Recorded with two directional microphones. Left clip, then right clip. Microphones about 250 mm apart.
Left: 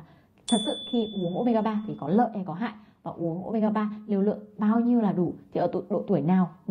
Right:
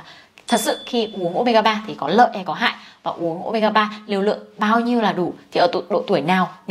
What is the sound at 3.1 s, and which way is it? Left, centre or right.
Speech, right.